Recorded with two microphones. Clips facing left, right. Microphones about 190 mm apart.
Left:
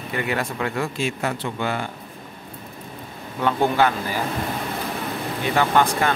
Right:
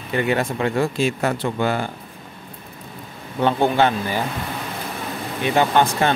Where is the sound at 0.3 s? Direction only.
25° right (ahead or behind).